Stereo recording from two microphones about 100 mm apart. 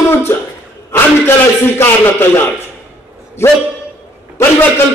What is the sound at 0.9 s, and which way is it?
A man's voice, 25° left (ahead or behind).